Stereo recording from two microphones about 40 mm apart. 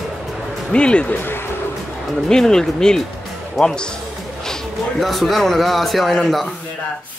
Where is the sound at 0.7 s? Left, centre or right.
Left.